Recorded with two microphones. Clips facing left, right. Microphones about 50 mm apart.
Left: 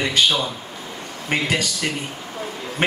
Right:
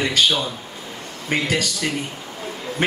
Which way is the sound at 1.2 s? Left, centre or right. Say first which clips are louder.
Even; left.